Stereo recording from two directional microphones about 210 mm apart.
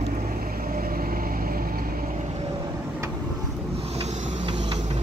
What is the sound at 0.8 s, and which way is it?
Vehicle, 40° right (ahead or behind).